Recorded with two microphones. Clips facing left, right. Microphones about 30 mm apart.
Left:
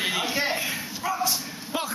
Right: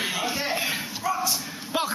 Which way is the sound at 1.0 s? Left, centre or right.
Left.